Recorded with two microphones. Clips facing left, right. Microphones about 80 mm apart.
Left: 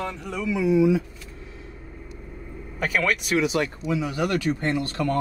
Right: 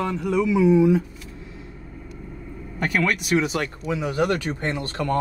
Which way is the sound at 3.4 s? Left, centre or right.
Right.